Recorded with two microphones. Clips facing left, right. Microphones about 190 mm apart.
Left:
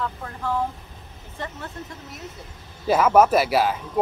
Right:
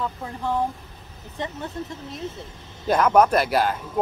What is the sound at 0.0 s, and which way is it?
Speech, 15° right (ahead or behind).